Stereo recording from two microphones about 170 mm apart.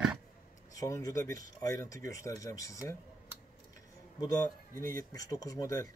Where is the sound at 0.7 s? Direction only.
20° left (ahead or behind).